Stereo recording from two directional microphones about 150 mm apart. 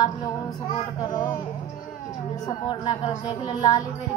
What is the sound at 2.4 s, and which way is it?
Speech, 30° left (ahead or behind).